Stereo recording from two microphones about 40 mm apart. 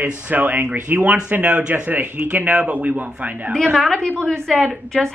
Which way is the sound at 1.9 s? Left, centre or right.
Right.